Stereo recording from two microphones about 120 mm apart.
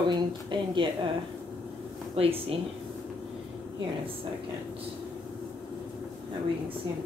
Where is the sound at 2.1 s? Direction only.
55° right (ahead or behind).